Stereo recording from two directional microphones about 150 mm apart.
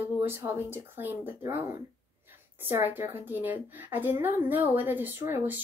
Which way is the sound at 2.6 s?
15° right (ahead or behind).